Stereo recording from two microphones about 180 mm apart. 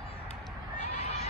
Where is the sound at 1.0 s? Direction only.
35° left (ahead or behind).